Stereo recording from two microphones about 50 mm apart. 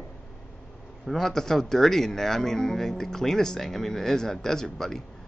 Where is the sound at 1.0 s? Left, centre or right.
Centre.